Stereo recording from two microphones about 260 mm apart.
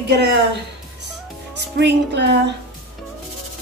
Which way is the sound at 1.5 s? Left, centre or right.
Right.